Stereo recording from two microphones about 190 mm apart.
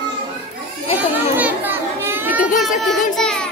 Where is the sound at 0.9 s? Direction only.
10° right (ahead or behind).